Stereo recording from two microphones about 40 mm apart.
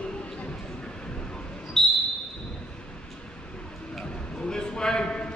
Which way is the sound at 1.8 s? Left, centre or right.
Centre.